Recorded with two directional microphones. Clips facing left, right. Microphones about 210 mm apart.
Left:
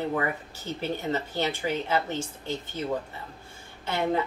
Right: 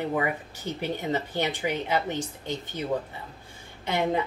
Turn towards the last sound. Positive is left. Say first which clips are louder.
# right 1 dB
turn(degrees=-15)  # may be behind; listen again after turning